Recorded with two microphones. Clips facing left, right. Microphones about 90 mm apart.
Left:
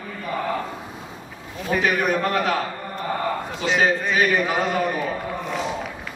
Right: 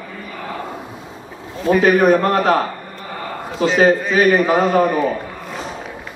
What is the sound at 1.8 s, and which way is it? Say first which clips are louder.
Speech: right 8 dB; 40° right (ahead or behind).